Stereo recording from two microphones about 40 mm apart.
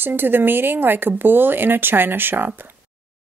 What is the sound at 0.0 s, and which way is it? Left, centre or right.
A woman's voice, right.